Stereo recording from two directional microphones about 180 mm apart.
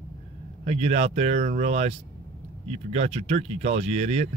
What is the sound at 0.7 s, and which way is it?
Speech, 35° right (ahead or behind).